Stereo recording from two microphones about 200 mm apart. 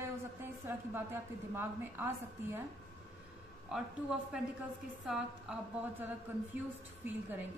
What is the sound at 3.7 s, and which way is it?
A woman's voice, 5° right (ahead or behind).